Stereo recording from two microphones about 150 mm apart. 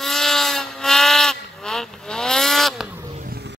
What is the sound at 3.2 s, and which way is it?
Music, 75° right (ahead or behind).